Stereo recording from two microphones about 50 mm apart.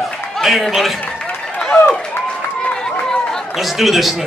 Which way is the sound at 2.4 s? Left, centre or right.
Left.